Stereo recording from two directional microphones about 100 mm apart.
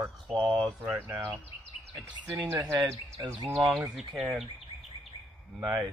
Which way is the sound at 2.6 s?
30° right (ahead or behind).